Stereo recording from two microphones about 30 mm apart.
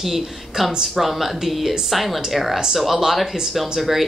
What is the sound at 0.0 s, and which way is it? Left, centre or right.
A woman's voice, centre.